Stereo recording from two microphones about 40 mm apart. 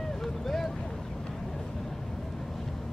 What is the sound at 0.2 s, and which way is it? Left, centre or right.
Boat, centre.